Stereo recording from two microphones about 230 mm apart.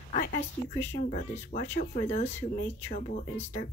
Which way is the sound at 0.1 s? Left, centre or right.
Left.